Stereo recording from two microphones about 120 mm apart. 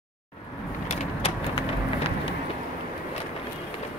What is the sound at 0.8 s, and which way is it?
Vehicle, 60° left (ahead or behind).